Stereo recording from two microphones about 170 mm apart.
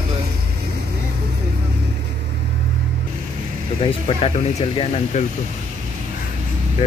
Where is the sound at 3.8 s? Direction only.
35° left (ahead or behind).